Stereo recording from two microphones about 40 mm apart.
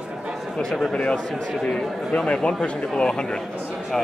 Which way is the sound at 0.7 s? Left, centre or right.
Centre.